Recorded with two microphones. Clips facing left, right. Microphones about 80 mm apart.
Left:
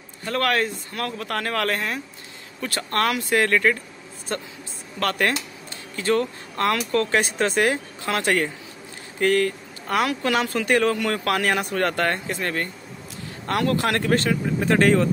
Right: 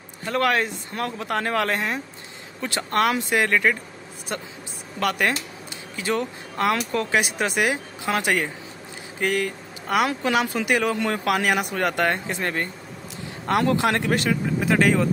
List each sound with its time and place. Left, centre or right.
0.2 s speech: centre
5.9 s speech: centre